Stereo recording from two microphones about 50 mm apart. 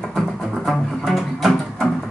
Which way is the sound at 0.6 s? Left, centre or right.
Centre.